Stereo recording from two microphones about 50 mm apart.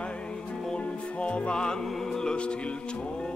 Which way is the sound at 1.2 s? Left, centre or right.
Left.